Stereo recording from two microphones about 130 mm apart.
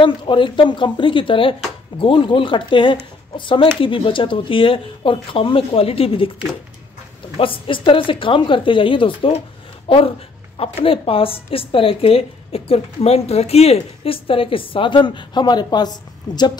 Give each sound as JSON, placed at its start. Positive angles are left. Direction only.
{"t": 0.0, "sound": "a woman's voice", "side_deg": 40}
{"t": 7.3, "sound": "a woman's voice", "side_deg": 45}